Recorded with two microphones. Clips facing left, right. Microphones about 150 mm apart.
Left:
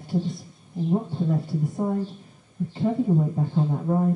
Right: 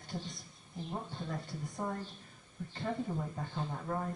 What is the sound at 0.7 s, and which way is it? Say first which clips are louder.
Speech: left 16 dB; 30° left (ahead or behind).